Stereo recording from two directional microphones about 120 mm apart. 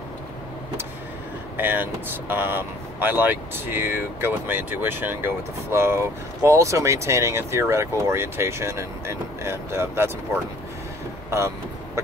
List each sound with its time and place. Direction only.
1.6 s speech: 15° right (ahead or behind)
11.2 s vehicle: 25° right (ahead or behind)